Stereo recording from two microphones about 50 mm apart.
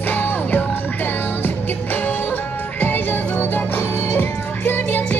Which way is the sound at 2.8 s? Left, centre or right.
Left.